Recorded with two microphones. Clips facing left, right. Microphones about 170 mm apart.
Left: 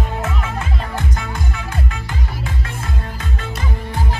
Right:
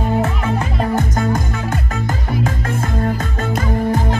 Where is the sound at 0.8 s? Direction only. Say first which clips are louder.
Right 8 dB; 45° right (ahead or behind).